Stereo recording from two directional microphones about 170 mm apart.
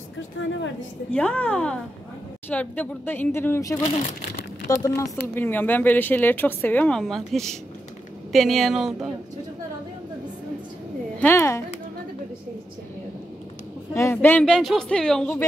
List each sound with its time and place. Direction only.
0.4 s a woman's voice: 90° left
1.1 s speech: 10° left (ahead or behind)
11.1 s speech: 15° left (ahead or behind)
13.9 s speech: 15° left (ahead or behind)